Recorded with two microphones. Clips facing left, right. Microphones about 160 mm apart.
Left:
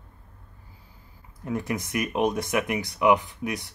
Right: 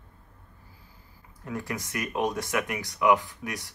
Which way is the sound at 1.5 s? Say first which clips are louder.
Left 5 dB; 20° left (ahead or behind).